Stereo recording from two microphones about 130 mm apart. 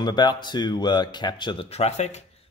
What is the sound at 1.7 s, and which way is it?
Speech, 55° left (ahead or behind).